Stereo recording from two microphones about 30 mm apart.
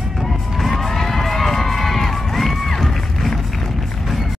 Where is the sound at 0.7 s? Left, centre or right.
Centre.